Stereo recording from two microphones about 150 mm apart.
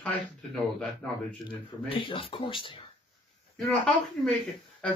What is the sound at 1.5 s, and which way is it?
Speech, 35° left (ahead or behind).